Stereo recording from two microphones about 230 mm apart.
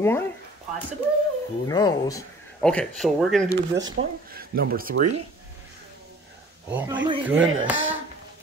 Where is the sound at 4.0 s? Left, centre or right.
Right.